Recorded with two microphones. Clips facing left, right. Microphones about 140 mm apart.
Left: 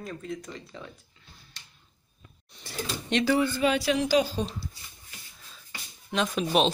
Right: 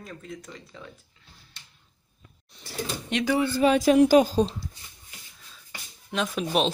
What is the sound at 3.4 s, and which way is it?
A woman's voice, 35° right (ahead or behind).